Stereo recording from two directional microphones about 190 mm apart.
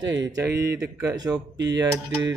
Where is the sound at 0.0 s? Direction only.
20° right (ahead or behind).